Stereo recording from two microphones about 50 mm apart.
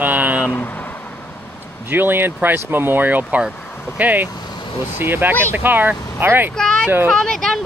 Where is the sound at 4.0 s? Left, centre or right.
Right.